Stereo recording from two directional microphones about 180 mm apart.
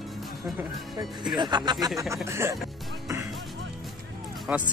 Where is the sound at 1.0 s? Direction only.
25° right (ahead or behind).